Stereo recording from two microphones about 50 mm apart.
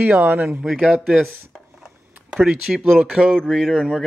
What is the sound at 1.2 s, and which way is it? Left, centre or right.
Dishes, centre.